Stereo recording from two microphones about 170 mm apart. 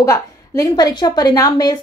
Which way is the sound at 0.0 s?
20° left (ahead or behind).